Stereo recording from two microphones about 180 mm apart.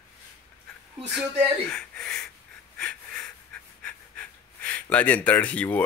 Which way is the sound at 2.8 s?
5° left (ahead or behind).